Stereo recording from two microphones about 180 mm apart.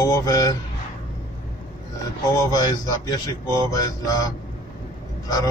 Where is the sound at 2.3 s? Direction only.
20° left (ahead or behind).